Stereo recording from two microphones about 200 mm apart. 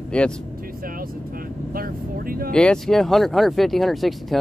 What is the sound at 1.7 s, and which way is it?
Vehicle, 45° right (ahead or behind).